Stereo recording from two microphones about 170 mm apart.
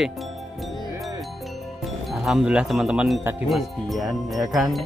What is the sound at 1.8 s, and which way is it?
Speech, centre (ahead or behind).